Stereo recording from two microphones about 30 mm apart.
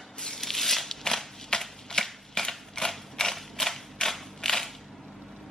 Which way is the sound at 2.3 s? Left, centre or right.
Centre.